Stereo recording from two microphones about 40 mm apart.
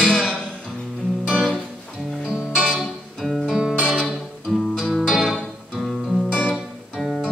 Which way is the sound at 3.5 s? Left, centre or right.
Centre.